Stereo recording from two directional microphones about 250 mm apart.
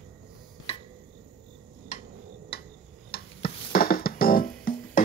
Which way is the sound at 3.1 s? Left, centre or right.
Left.